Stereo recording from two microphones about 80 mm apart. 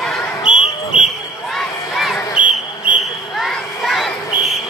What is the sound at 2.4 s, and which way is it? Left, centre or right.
Whistle, centre.